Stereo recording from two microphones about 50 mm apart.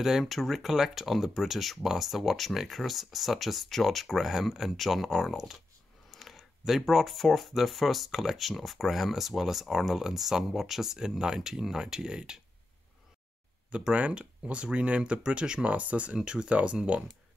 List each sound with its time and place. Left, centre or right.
0.3 s speech: centre
13.9 s speech: right